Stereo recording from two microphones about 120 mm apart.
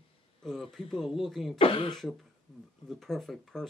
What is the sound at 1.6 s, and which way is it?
Speech, 50° left (ahead or behind).